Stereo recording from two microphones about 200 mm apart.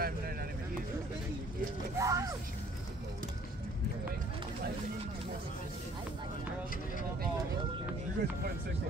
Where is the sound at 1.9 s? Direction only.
15° right (ahead or behind).